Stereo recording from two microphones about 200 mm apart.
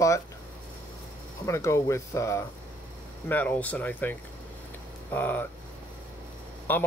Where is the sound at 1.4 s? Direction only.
15° left (ahead or behind).